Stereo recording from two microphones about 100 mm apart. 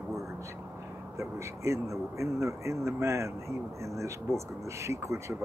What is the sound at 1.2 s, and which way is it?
Speech, 30° right (ahead or behind).